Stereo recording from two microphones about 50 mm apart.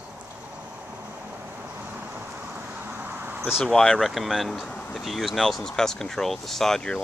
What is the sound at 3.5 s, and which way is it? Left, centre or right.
Speech, centre.